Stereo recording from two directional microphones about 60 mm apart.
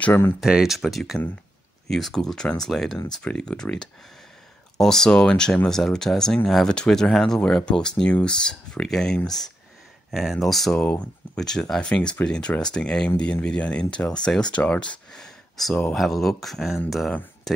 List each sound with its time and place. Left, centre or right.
0.4 s speech: centre
10.1 s speech: centre